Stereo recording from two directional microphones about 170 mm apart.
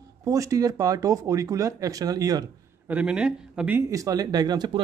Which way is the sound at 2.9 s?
5° right (ahead or behind).